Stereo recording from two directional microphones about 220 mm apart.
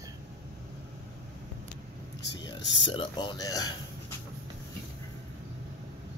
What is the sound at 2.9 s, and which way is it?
Speech, 20° left (ahead or behind).